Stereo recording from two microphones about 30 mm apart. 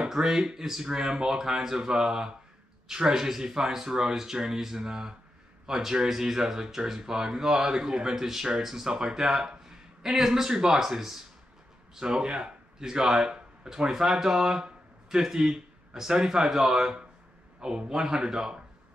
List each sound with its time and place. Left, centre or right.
0.0 s a sound: centre
0.4 s speech: right
11.9 s a man's voice: right
17.9 s speech: centre